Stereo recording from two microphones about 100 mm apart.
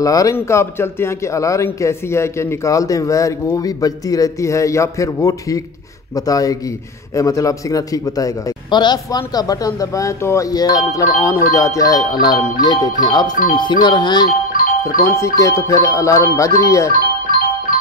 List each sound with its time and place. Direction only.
0.0 s speech: 35° left (ahead or behind)
8.6 s speech: 45° left (ahead or behind)
15.1 s speech: 30° left (ahead or behind)